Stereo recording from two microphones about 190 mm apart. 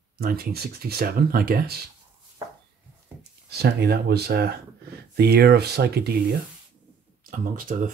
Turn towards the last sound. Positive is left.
turn(degrees=-45)  # may be behind; listen again after turning